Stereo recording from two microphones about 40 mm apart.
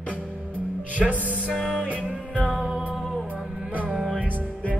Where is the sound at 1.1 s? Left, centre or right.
Right.